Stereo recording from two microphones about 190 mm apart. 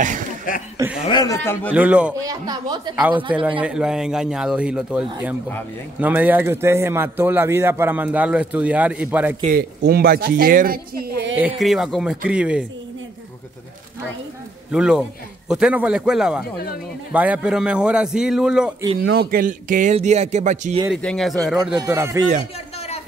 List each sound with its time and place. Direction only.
0.7 s speech: 10° right (ahead or behind)
1.0 s speech: 20° left (ahead or behind)
1.7 s a man's voice: 5° right (ahead or behind)
2.2 s speech: 20° right (ahead or behind)
3.6 s a man's voice: 5° right (ahead or behind)
9.4 s speech: 50° right (ahead or behind)
11.3 s a man's voice: 5° right (ahead or behind)
14.7 s a man's voice: 5° right (ahead or behind)
18.9 s a man's voice: 55° right (ahead or behind); by 20.8 s 40° right (ahead or behind)
20.9 s a man's voice: 5° left (ahead or behind)
21.8 s a man's voice: 15° right (ahead or behind)